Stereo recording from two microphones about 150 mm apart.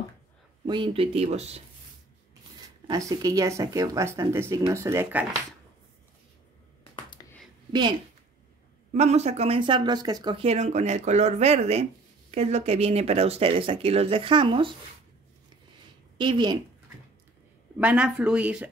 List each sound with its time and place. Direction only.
0.7 s speech: 35° right (ahead or behind)
2.9 s speech: 25° right (ahead or behind)
7.2 s a sound: 30° left (ahead or behind)
8.9 s speech: 45° right (ahead or behind)
9.6 s speech: 30° right (ahead or behind)
10.4 s speech: 45° right (ahead or behind)
16.2 s speech: 30° right (ahead or behind)
17.7 s speech: 10° right (ahead or behind)